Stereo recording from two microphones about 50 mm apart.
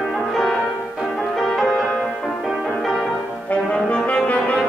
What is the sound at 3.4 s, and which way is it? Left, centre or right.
Brass instrument, left.